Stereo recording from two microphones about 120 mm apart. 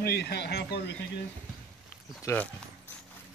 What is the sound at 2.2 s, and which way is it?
Speech, 15° left (ahead or behind).